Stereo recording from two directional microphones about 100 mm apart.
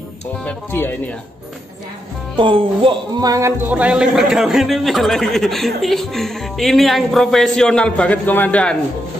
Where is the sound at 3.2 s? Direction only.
35° right (ahead or behind).